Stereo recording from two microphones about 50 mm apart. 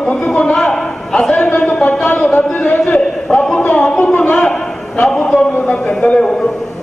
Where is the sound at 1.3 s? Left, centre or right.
Left.